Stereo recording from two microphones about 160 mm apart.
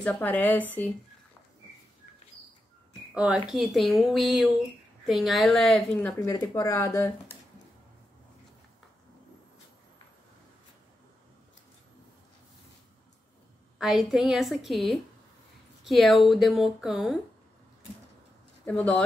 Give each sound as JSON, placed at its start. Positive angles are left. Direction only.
{"t": 0.0, "sound": "speech", "side_deg": 10}
{"t": 3.2, "sound": "a woman's voice", "side_deg": -10}
{"t": 6.1, "sound": "speech", "side_deg": 20}
{"t": 13.7, "sound": "a woman's voice", "side_deg": 0}
{"t": 18.7, "sound": "speech", "side_deg": 10}